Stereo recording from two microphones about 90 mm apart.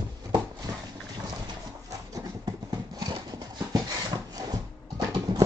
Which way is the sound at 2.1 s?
50° right (ahead or behind).